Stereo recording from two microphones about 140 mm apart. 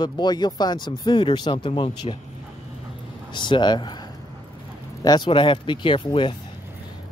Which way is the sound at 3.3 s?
35° left (ahead or behind).